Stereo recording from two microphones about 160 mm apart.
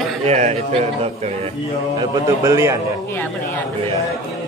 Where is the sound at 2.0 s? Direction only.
20° right (ahead or behind).